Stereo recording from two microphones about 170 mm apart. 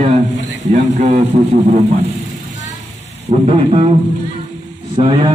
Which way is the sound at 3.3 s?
40° right (ahead or behind).